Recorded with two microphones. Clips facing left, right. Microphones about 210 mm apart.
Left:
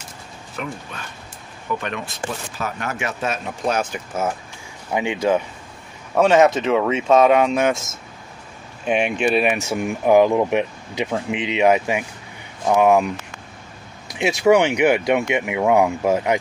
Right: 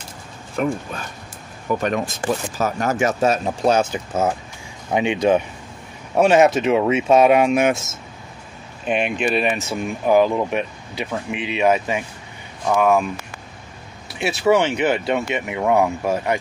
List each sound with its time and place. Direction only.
0.6 s speech: 40° right (ahead or behind)
1.8 s speech: 40° right (ahead or behind); by 7.8 s 15° right (ahead or behind)
8.8 s speech: 10° left (ahead or behind)